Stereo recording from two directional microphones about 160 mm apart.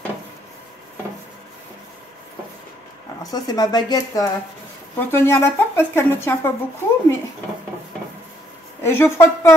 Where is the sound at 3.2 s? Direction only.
25° left (ahead or behind).